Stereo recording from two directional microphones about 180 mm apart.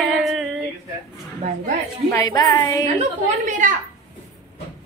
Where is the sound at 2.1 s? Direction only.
20° left (ahead or behind).